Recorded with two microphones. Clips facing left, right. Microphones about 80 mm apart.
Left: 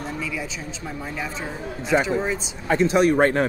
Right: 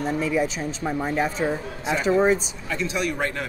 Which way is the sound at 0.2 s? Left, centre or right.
Right.